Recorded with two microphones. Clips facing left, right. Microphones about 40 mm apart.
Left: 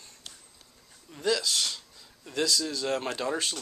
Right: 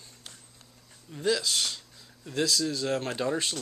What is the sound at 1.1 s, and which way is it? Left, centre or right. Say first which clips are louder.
Speech: even; centre.